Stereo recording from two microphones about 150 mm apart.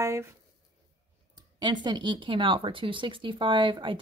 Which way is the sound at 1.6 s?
30° right (ahead or behind).